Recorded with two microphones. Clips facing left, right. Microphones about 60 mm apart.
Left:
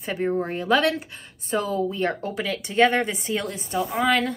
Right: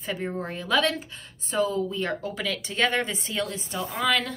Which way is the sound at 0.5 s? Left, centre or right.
Left.